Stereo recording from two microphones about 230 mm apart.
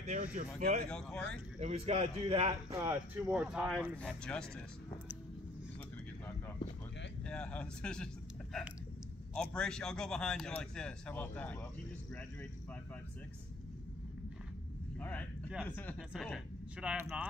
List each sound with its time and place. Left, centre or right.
0.1 s speech: right
0.8 s a man's voice: centre
1.6 s a man's voice: right
2.7 s a man's voice: centre
7.2 s a man's voice: centre
9.3 s a man's voice: centre
15.0 s a man's voice: centre